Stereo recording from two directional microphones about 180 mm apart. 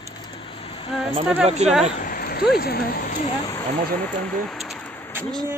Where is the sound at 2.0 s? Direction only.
55° left (ahead or behind).